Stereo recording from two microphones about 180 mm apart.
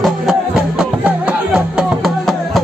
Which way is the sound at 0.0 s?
Centre (ahead or behind).